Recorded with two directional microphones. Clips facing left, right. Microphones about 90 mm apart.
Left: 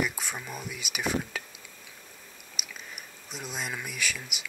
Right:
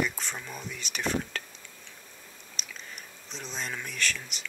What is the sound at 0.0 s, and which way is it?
Speech, 10° left (ahead or behind).